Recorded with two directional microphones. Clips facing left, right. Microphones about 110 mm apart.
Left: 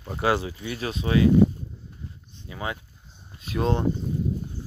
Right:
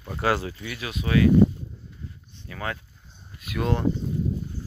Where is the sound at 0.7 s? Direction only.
30° left (ahead or behind).